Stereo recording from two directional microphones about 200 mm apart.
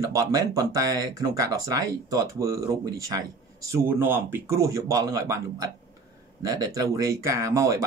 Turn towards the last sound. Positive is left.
turn(degrees=-15)  # may be behind; listen again after turning